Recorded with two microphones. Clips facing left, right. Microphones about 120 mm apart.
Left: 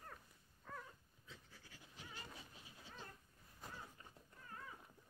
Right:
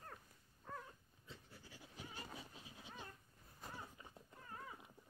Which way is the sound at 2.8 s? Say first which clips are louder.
Right 2 dB; 15° right (ahead or behind).